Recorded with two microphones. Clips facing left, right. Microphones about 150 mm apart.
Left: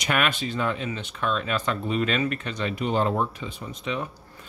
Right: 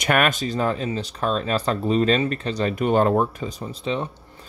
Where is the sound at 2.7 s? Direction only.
50° right (ahead or behind); by 4.5 s 30° right (ahead or behind).